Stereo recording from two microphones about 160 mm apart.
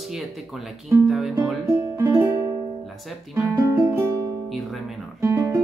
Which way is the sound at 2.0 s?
15° right (ahead or behind).